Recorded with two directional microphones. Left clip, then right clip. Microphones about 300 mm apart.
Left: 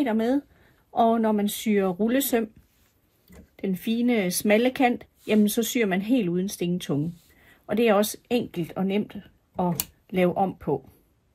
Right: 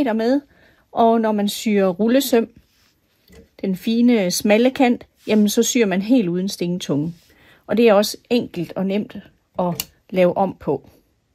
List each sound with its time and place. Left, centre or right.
0.9 s speech: right
3.5 s speech: right